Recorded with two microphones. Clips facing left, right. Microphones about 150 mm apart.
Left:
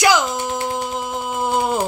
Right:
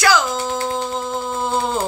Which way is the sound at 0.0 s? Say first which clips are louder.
Left 1 dB; 20° left (ahead or behind).